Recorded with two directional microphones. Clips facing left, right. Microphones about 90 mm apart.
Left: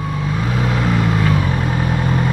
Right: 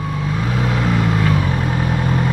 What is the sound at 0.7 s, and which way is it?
Vehicle, 25° left (ahead or behind).